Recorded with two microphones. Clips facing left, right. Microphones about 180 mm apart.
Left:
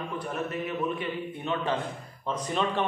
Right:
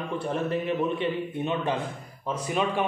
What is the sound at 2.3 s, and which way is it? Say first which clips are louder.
Speech: right 2 dB; 10° right (ahead or behind).